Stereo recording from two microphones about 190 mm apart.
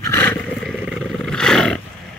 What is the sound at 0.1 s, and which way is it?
Roar, 10° left (ahead or behind).